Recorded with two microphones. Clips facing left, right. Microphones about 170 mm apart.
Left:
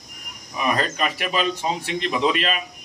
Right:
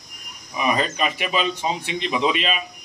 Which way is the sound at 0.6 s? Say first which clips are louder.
Right 1 dB; 5° right (ahead or behind).